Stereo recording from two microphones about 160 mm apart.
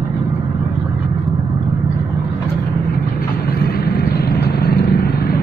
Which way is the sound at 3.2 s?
70° left (ahead or behind).